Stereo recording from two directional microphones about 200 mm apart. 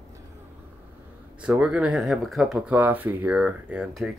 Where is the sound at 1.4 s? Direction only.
5° right (ahead or behind).